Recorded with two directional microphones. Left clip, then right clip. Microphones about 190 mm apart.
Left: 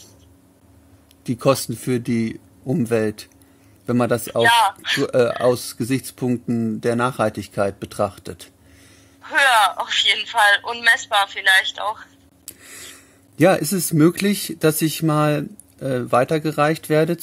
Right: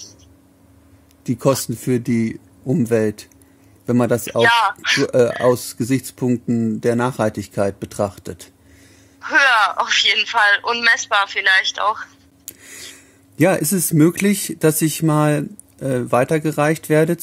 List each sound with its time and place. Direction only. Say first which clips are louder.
1.2 s speech: even; 25° right (ahead or behind)
4.3 s speech: even; 40° right (ahead or behind)
5.1 s speech: even; 25° right (ahead or behind)
9.2 s speech: right 1 dB; 40° right (ahead or behind)
12.6 s a sound: right 3 dB; 10° right (ahead or behind)
13.4 s speech: even; 20° right (ahead or behind)